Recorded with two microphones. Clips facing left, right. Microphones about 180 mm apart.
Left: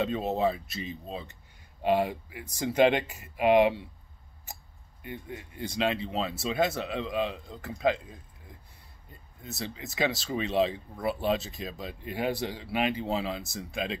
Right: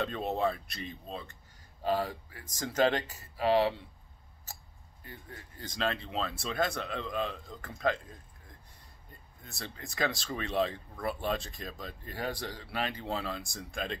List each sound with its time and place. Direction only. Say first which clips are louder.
0.0 s speech: left 4 dB; 5° left (ahead or behind)
1.8 s speech: left 5 dB; 15° left (ahead or behind)
5.0 s speech: left 9 dB; 15° left (ahead or behind)